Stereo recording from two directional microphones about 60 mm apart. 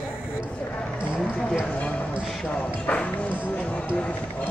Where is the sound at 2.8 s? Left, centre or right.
Left.